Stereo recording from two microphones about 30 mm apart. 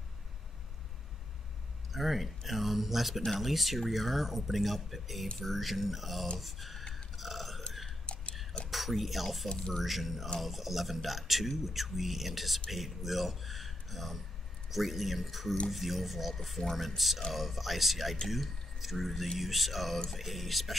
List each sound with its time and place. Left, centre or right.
1.9 s speech: centre
6.8 s burping: left
7.2 s burping: centre
8.1 s a sound: left
8.6 s speech: centre
9.5 s speech: left
9.8 s speech: centre